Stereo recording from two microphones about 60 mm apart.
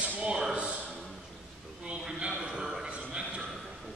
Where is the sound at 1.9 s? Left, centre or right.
Centre.